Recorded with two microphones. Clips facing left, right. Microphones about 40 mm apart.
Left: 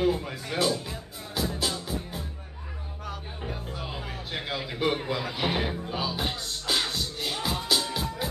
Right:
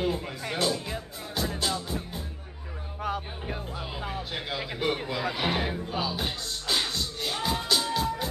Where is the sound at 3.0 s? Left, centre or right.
Right.